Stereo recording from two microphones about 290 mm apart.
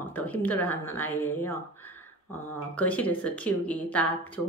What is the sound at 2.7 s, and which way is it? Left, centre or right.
Speech, centre.